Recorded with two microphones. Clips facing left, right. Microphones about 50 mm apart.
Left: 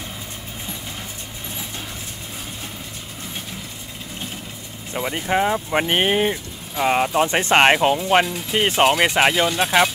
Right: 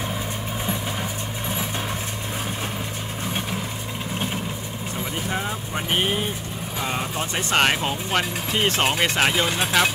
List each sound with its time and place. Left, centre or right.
4.9 s speech: left